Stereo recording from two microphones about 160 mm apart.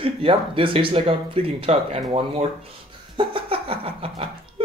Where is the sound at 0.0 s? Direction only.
35° right (ahead or behind).